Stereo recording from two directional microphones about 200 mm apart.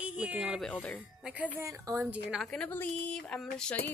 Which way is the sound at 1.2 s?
5° right (ahead or behind).